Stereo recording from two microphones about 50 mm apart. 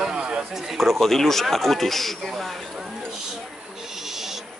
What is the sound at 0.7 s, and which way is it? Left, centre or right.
A man's voice, centre.